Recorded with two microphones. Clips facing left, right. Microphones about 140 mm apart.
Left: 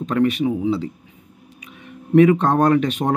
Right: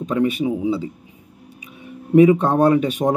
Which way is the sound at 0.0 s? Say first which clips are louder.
Left 1 dB; 10° right (ahead or behind).